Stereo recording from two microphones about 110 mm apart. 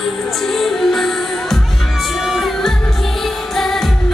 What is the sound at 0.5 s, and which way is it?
Music, centre (ahead or behind).